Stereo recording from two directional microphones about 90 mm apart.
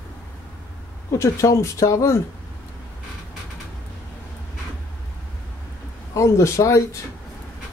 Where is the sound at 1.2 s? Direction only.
35° left (ahead or behind).